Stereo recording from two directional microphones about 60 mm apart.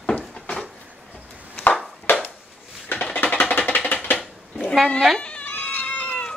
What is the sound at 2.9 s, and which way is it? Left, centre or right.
Music, left.